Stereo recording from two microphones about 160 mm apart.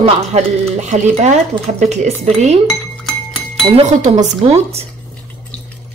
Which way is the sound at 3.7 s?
45° right (ahead or behind).